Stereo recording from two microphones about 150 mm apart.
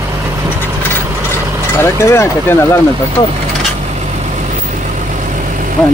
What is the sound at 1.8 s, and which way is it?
Speech, 20° left (ahead or behind).